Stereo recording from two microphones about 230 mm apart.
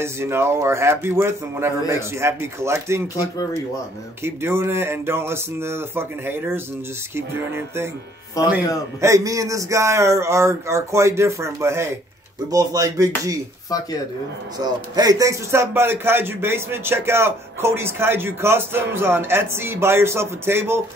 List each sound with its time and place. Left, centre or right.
0.0 s a man's voice: centre
8.4 s speech: centre
9.0 s a man's voice: centre
14.6 s a man's voice: centre